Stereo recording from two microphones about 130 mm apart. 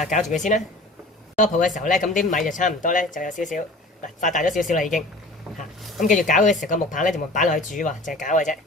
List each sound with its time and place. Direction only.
0.1 s speech: 70° left (ahead or behind)
6.0 s speech: 80° left